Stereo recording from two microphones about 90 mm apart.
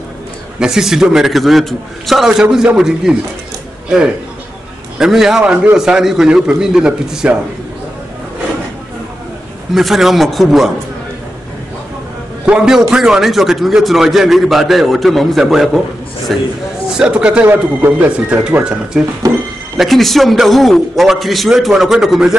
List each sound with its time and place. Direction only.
0.6 s a man's voice: 5° right (ahead or behind)
4.9 s a man's voice: 5° right (ahead or behind)
9.8 s a man's voice: 5° right (ahead or behind)
12.4 s a man's voice: 10° right (ahead or behind)
16.9 s a man's voice: 10° right (ahead or behind)
19.8 s a man's voice: centre (ahead or behind)